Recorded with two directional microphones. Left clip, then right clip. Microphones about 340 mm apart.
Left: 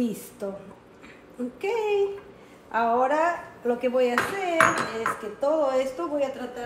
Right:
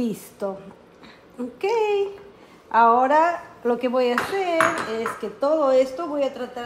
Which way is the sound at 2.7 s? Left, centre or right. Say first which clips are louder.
Right 7 dB; right.